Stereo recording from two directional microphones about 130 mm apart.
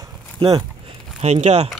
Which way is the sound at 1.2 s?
55° right (ahead or behind).